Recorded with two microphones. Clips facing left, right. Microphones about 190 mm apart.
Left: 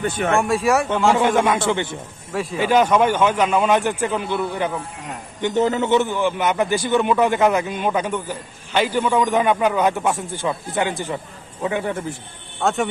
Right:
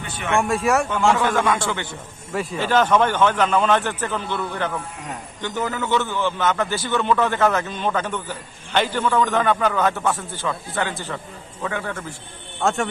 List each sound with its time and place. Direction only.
0.0 s speech: 45° left (ahead or behind)
0.4 s speech: centre (ahead or behind)
0.8 s a man's voice: 25° left (ahead or behind)
2.3 s a man's voice: 5° left (ahead or behind)
5.4 s a man's voice: 25° left (ahead or behind)
12.6 s speech: centre (ahead or behind)